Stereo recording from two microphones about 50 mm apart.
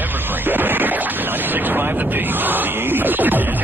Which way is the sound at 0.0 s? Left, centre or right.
Right.